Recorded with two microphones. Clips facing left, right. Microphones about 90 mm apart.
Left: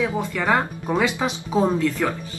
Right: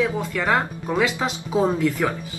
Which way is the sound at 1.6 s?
10° right (ahead or behind).